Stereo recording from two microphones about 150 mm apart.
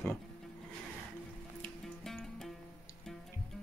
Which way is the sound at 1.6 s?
5° left (ahead or behind).